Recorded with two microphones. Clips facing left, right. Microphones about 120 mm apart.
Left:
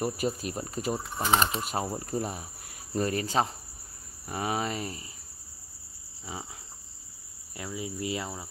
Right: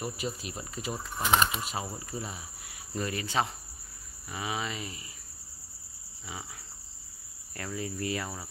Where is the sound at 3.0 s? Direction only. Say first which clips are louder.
Left 4 dB; 40° left (ahead or behind).